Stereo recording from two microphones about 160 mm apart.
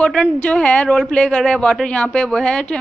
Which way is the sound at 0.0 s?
5° left (ahead or behind).